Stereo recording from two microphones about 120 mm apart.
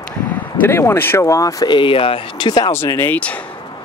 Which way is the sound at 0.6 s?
20° left (ahead or behind).